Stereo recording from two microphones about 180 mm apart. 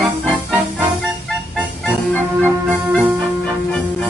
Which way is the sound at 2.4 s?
10° right (ahead or behind).